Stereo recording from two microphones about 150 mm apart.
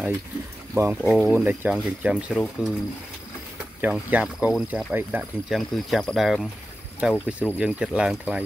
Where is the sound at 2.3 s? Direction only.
5° left (ahead or behind).